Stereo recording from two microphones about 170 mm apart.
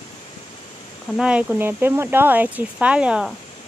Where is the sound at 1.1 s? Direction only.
5° right (ahead or behind).